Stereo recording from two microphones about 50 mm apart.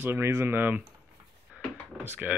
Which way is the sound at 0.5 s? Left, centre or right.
Right.